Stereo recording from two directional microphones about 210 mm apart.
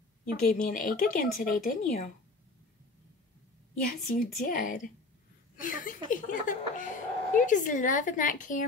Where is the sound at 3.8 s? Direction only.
40° left (ahead or behind).